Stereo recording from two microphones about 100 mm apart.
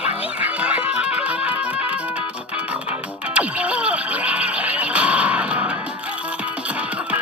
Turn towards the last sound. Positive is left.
turn(degrees=-15)  # may be behind; listen again after turning